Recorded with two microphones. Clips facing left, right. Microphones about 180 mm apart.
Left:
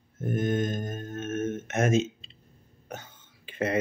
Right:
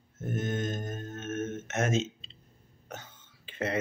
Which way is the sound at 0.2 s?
15° left (ahead or behind).